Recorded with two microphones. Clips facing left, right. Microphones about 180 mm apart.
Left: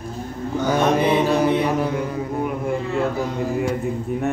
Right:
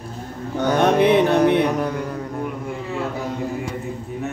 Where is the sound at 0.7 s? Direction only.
65° right (ahead or behind).